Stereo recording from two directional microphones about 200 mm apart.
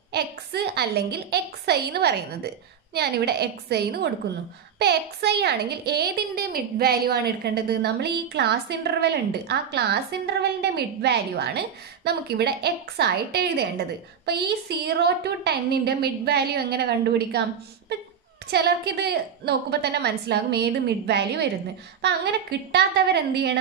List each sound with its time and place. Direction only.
0.1 s a woman's voice: 55° right (ahead or behind)
18.5 s a woman's voice: 55° right (ahead or behind)